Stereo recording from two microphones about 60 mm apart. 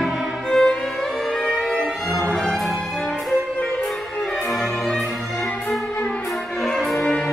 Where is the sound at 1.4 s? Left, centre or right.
Centre.